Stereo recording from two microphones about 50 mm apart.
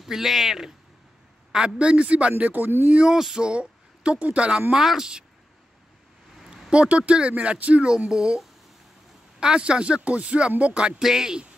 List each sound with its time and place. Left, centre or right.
0.0 s speech: centre
1.8 s speech: right
3.0 s speech: centre
3.4 s speech: right
4.7 s speech: centre
6.4 s a sound: centre
6.7 s speech: right
8.1 s speech: centre
9.4 s speech: centre
11.0 s speech: centre